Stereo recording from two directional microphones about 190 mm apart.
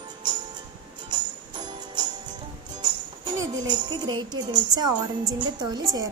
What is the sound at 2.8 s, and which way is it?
Speech, 25° right (ahead or behind).